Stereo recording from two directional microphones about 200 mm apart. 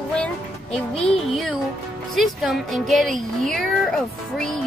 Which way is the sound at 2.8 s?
Centre (ahead or behind).